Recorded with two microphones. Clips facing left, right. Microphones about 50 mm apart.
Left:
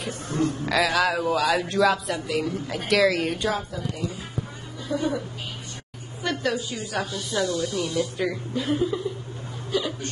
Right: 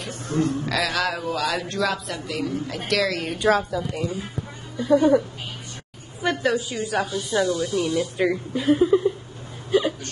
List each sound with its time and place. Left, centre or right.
0.0 s a man's voice: centre
4.8 s speech: right
6.2 s a woman's voice: centre
8.0 s speech: right
8.5 s a woman's voice: centre
9.7 s hiccup: right